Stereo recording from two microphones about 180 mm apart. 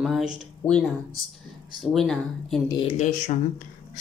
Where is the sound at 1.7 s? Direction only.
Centre (ahead or behind).